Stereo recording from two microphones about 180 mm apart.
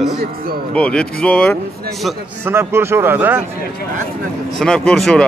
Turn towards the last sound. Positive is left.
turn(degrees=5)  # may be behind; listen again after turning